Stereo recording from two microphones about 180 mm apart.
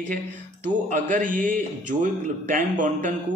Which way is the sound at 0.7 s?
45° right (ahead or behind).